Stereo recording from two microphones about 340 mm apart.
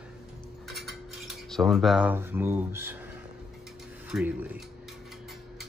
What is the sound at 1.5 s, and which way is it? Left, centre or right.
Speech, centre.